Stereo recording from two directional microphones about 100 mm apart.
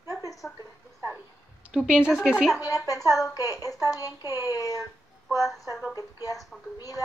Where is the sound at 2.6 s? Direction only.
35° left (ahead or behind).